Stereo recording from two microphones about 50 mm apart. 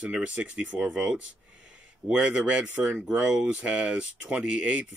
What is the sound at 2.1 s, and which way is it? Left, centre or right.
Speech, centre.